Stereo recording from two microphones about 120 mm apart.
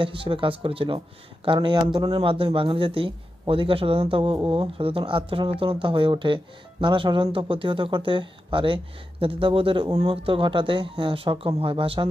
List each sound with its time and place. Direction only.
0.0 s speech: 45° right (ahead or behind)